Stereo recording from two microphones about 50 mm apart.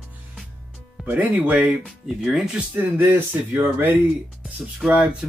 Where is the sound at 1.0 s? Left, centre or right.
Right.